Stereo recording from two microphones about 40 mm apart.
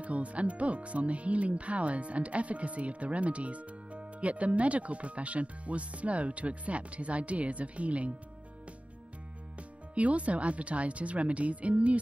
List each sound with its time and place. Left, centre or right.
0.0 s speech: right
9.6 s speech: right